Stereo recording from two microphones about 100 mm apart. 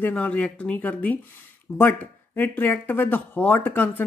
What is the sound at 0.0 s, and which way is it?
A man's voice, 15° left (ahead or behind).